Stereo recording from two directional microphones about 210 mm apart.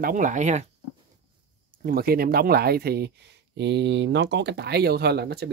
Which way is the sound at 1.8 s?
45° right (ahead or behind).